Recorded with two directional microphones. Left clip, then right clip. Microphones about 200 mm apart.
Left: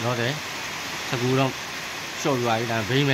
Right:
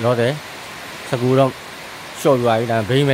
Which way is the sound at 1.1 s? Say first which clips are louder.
Right 8 dB; 45° right (ahead or behind).